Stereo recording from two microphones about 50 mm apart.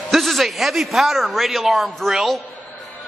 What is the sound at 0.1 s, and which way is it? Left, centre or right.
A man's voice, centre.